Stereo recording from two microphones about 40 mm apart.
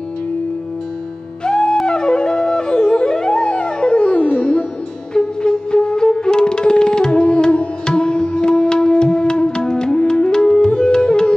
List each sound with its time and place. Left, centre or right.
1.4 s music: centre
1.9 s flute: left
5.1 s music: left